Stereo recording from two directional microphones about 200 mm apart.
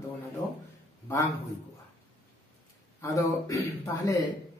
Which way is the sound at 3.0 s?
15° left (ahead or behind).